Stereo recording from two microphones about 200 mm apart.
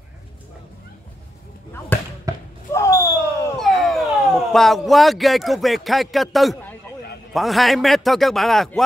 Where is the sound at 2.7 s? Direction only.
15° left (ahead or behind).